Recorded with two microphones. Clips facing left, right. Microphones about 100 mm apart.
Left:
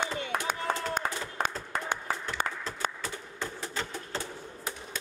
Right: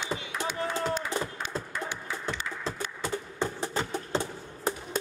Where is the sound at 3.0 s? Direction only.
30° right (ahead or behind).